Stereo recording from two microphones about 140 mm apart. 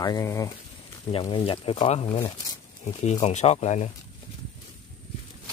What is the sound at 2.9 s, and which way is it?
Speech, 50° left (ahead or behind).